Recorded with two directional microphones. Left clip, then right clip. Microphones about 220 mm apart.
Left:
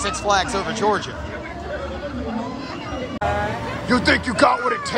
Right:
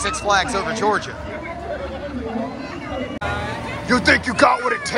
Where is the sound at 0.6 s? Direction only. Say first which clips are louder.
Right 1 dB; 5° left (ahead or behind).